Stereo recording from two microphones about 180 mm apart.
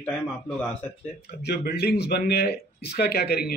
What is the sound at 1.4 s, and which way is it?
Speech, 60° left (ahead or behind).